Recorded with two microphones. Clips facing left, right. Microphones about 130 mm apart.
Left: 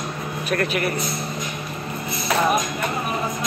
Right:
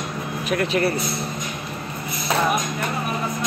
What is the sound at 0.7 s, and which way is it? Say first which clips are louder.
Speech: right 3 dB; 30° right (ahead or behind).